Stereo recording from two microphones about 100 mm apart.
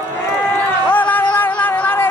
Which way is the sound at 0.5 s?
15° left (ahead or behind).